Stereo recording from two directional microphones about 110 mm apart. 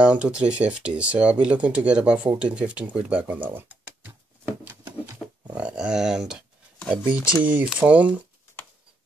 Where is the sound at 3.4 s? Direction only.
15° right (ahead or behind).